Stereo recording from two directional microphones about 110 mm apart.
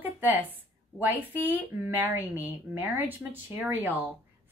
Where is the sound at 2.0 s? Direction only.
20° right (ahead or behind).